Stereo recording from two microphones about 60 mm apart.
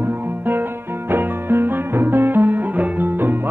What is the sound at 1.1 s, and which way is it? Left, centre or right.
Music, right.